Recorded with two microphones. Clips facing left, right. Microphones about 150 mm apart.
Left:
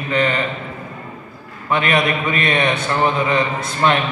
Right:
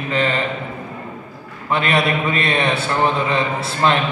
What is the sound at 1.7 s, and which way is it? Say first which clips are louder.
A man's voice: even; 30° right (ahead or behind).